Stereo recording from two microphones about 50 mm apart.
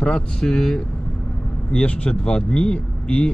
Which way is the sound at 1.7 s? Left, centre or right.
Left.